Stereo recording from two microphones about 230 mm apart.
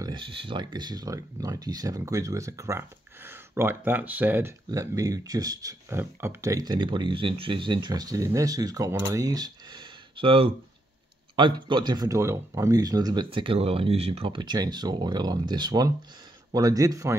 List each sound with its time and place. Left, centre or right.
0.0 s speech: right